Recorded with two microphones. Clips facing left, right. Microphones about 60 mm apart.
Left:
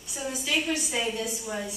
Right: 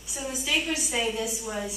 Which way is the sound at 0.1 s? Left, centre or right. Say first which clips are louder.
Even; centre.